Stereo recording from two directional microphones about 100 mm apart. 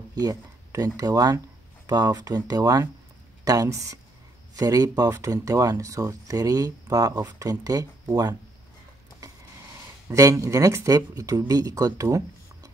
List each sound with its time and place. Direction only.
0.1 s speech: 40° right (ahead or behind)
10.0 s speech: 35° right (ahead or behind)